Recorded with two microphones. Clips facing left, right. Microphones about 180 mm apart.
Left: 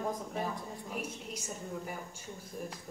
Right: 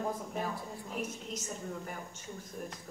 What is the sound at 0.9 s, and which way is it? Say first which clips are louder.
Speech: right 2 dB; 10° left (ahead or behind).